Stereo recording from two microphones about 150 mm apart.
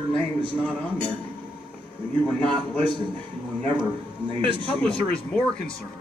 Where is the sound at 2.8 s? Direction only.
30° right (ahead or behind).